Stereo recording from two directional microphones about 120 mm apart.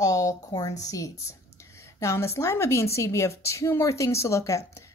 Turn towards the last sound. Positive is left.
turn(degrees=25)  # may be behind; listen again after turning